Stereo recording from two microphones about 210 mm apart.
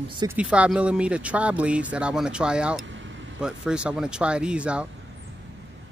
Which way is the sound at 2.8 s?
60° right (ahead or behind).